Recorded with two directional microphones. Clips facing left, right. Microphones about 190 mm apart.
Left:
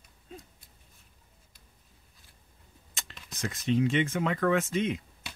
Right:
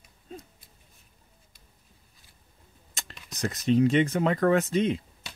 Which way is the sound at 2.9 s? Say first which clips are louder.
Right 2 dB; 40° right (ahead or behind).